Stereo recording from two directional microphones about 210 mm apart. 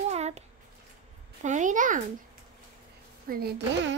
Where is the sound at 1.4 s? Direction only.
35° right (ahead or behind).